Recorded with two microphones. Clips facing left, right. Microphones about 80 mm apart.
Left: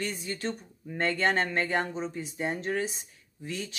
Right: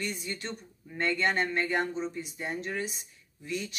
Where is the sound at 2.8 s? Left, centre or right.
Left.